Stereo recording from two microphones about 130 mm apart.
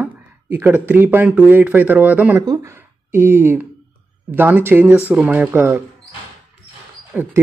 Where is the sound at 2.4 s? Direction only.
25° right (ahead or behind).